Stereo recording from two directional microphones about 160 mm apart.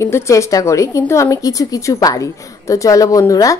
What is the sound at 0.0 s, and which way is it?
A woman's voice, 15° left (ahead or behind).